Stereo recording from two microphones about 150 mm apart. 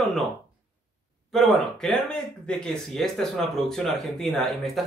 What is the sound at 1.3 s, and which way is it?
Speech, centre (ahead or behind).